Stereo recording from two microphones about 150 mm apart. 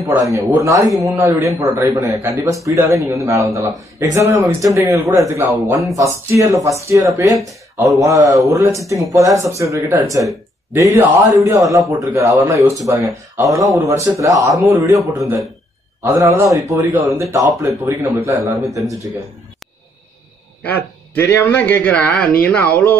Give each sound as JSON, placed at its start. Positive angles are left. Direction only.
{"t": 0.0, "sound": "a man's voice", "side_deg": -20}
{"t": 16.0, "sound": "a man's voice", "side_deg": -15}
{"t": 20.6, "sound": "a man's voice", "side_deg": 10}